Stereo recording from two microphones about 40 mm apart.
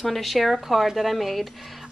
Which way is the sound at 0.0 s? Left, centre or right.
Centre.